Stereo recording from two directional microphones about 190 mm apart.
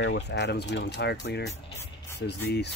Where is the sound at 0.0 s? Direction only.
65° left (ahead or behind).